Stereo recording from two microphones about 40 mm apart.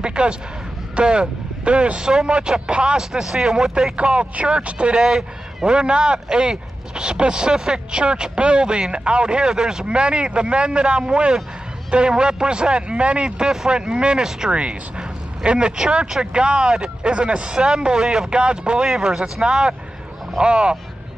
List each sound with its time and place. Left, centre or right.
0.0 s a sound: right
0.9 s speech: right
3.0 s speech: centre
3.9 s speech: right
5.0 s speech: centre
9.5 s speech: centre
9.8 s speech: right